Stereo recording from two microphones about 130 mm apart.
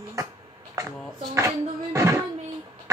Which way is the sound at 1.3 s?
25° right (ahead or behind).